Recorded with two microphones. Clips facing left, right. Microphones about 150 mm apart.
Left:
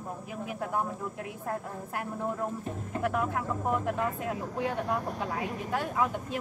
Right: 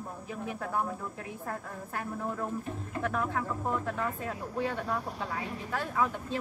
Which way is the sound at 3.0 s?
15° left (ahead or behind).